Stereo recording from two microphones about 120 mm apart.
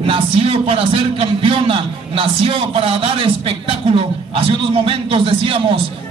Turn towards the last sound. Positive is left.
turn(degrees=-50)  # may be behind; listen again after turning